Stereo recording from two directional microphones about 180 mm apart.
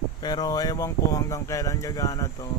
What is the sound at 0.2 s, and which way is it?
Speech, 20° left (ahead or behind).